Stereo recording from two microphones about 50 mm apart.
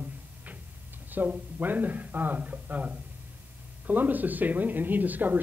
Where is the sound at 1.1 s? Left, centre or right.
Right.